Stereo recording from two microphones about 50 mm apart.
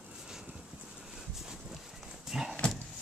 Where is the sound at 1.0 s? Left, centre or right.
Centre.